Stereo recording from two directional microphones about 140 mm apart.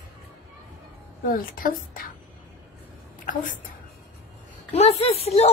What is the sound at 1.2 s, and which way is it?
Speech, 85° left.